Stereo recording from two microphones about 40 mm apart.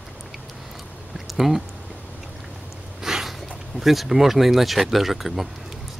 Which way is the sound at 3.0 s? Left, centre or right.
Centre.